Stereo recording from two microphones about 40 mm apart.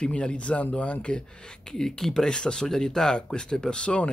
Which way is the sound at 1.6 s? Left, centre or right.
Centre.